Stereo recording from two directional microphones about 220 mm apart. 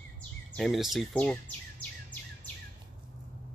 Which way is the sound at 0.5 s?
Centre (ahead or behind).